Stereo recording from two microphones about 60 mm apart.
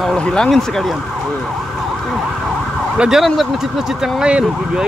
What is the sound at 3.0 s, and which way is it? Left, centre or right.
Speech, centre.